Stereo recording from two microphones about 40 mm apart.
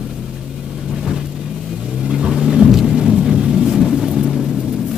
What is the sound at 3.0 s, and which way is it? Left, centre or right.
Thunder, centre.